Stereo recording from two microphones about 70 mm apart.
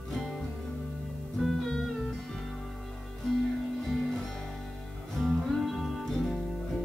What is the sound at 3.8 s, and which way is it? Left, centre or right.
Music, centre.